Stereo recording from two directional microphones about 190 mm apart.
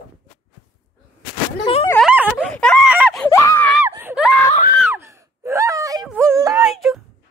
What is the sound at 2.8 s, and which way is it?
Screaming, 5° right (ahead or behind).